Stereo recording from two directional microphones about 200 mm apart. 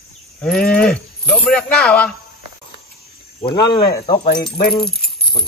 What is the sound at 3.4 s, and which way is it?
Speech, 25° left (ahead or behind).